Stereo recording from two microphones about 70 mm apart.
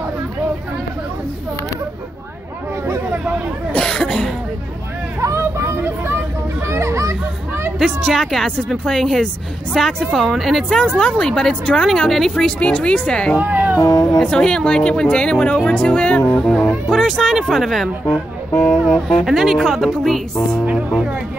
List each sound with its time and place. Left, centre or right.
3.7 s cough: centre
5.2 s hubbub: right
6.6 s children playing: right
7.8 s a woman's voice: centre
11.0 s speech: centre
13.4 s cat: right
13.7 s speech: left
14.1 s speech: centre
16.9 s a woman's voice: centre
18.5 s a sound: centre
19.2 s a woman's voice: centre